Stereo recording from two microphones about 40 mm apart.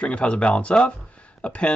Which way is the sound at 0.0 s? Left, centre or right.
Left.